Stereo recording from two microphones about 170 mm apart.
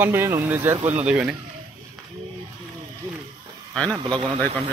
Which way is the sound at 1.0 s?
5° right (ahead or behind).